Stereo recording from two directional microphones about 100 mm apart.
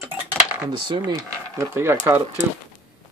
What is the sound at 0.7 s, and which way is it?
Speech, 50° right (ahead or behind).